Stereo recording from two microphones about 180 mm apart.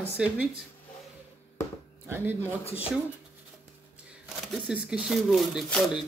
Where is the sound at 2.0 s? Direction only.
10° right (ahead or behind).